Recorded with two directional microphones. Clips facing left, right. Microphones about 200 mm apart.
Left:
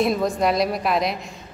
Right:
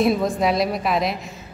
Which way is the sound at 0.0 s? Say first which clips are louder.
Right 1 dB; centre (ahead or behind).